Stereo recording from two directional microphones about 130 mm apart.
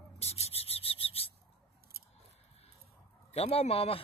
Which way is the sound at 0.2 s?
55° left (ahead or behind).